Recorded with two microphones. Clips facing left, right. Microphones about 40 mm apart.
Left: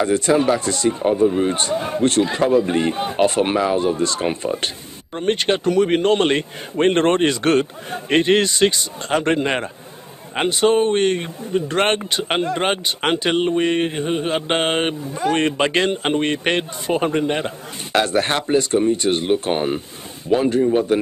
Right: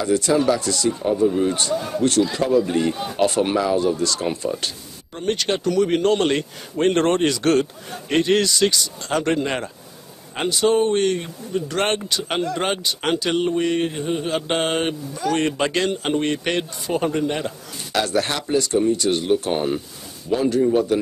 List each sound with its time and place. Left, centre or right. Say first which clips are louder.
0.0 s speech: left 2 dB; left